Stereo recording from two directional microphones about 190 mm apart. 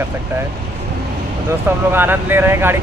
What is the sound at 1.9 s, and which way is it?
Speech, 10° right (ahead or behind).